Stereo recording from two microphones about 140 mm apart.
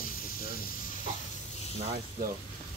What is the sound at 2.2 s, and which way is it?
Speech, 90° right.